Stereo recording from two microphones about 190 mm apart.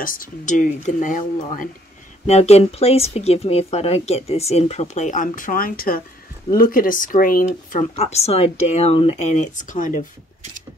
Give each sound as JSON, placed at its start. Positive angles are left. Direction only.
{"t": 0.0, "sound": "speech", "side_deg": 45}
{"t": 7.9, "sound": "speech", "side_deg": 35}